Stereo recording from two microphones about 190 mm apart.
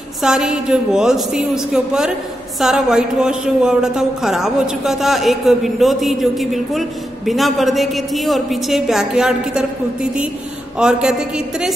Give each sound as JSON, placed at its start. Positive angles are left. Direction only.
{"t": 0.2, "sound": "a man's voice", "side_deg": -5}
{"t": 10.8, "sound": "a man's voice", "side_deg": -5}